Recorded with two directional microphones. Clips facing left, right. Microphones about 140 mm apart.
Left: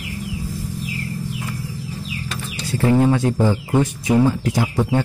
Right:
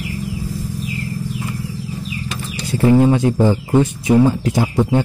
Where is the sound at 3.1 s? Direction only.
20° right (ahead or behind).